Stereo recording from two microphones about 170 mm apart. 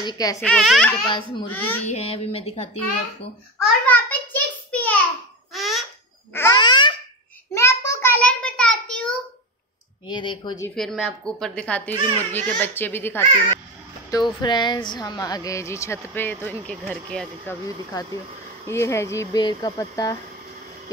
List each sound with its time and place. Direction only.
0.0 s a woman's voice: 20° left (ahead or behind)
0.4 s a child's voice: centre (ahead or behind)
1.0 s a woman's voice: 30° left (ahead or behind)
3.8 s a sound: 10° left (ahead or behind)
5.5 s laughter: centre (ahead or behind)
6.3 s a sound: 15° left (ahead or behind)
6.6 s baby laughter: 25° left (ahead or behind)
7.5 s a sound: 15° left (ahead or behind)
10.0 s a woman's voice: 30° left (ahead or behind)
10.8 s speech: centre (ahead or behind)
14.1 s a woman's voice: 25° left (ahead or behind); by 17.6 s 5° left (ahead or behind)
18.7 s a woman's voice: 15° left (ahead or behind)